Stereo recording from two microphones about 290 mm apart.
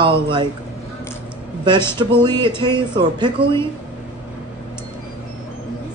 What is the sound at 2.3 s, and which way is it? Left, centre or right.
Speech, centre.